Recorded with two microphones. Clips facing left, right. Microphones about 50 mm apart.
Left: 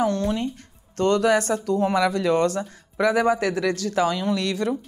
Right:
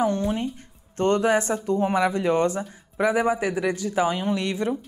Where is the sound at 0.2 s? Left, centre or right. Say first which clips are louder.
Left 1 dB; left.